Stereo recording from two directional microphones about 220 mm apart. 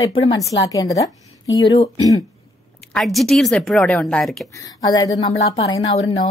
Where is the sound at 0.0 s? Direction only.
20° left (ahead or behind).